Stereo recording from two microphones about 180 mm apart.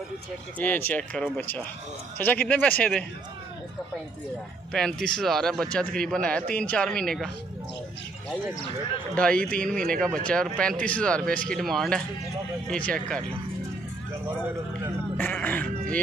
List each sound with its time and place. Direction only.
0.6 s speech: 10° left (ahead or behind)
4.7 s speech: 5° left (ahead or behind)
9.1 s speech: 5° left (ahead or behind)
15.1 s a sound: 10° left (ahead or behind)